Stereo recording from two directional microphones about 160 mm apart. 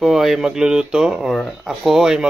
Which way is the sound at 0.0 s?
5° right (ahead or behind).